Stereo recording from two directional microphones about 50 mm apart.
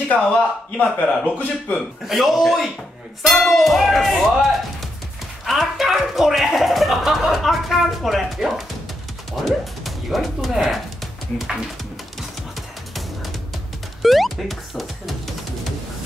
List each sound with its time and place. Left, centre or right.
0.1 s speech: left
2.0 s speech: centre
3.3 s speech: centre
3.5 s speech: centre
14.0 s speech: centre